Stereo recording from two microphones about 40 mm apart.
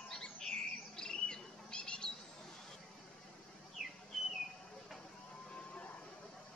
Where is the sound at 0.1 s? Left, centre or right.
Centre.